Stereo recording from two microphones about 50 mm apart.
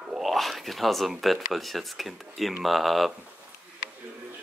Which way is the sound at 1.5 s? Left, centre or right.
Centre.